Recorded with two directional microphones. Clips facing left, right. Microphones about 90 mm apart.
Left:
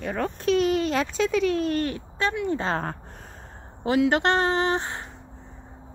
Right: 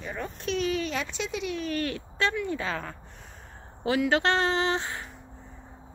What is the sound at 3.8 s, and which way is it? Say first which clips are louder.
A woman's voice: left 3 dB; 25° left (ahead or behind).